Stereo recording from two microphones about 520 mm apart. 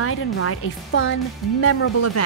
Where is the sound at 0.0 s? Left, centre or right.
Left.